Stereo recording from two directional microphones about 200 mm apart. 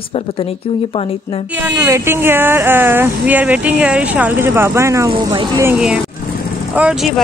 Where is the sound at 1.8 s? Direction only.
15° right (ahead or behind).